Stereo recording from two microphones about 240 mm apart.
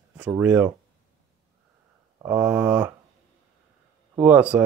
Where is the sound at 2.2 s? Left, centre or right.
Centre.